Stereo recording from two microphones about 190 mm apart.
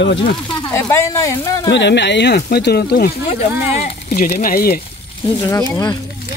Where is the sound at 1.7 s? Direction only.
70° left (ahead or behind).